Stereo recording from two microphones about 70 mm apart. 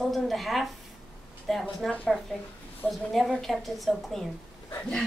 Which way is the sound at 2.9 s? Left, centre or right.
Centre.